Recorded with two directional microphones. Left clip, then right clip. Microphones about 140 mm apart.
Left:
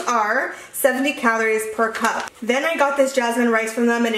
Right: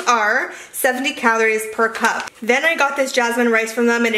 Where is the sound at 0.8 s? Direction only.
25° right (ahead or behind).